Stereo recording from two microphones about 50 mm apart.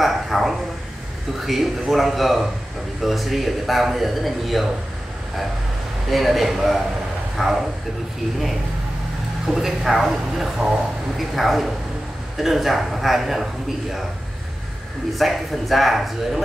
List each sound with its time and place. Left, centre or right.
0.0 s a sound: centre
1.4 s speech: centre
6.0 s speech: centre
9.5 s speech: centre
15.1 s speech: centre